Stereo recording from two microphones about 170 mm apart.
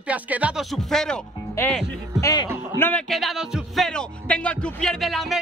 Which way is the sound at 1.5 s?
15° left (ahead or behind).